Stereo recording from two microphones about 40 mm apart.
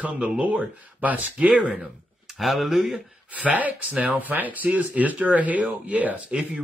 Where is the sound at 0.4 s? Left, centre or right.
Right.